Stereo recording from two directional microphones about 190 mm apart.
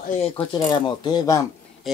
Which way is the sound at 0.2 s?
25° left (ahead or behind).